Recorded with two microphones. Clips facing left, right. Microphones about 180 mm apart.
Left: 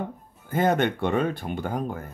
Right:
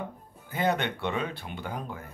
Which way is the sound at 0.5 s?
50° left (ahead or behind).